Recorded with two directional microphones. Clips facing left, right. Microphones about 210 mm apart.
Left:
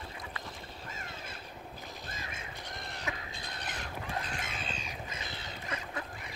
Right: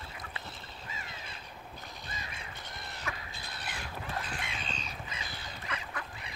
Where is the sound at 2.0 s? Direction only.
50° left (ahead or behind).